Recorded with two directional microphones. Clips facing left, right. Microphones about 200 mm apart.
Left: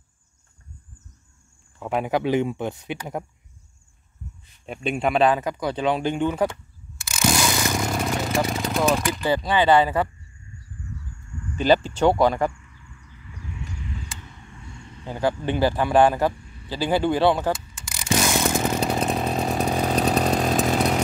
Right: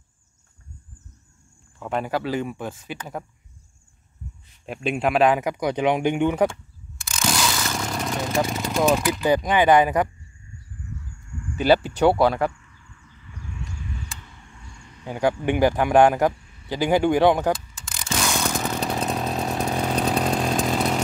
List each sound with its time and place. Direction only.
1.8 s speech: 5° left (ahead or behind)
2.0 s speech: 20° left (ahead or behind)
4.6 s speech: 5° right (ahead or behind)
5.3 s a man's voice: 15° right (ahead or behind)
7.1 s a sound: 10° left (ahead or behind)
9.3 s a man's voice: 15° right (ahead or behind)
11.5 s a man's voice: 10° right (ahead or behind)
13.3 s a sound: 5° left (ahead or behind)
15.0 s a man's voice: 15° right (ahead or behind)
18.0 s chainsaw: 10° left (ahead or behind)